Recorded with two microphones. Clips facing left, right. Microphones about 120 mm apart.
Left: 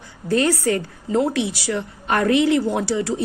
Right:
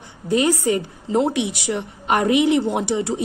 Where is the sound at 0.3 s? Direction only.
20° right (ahead or behind).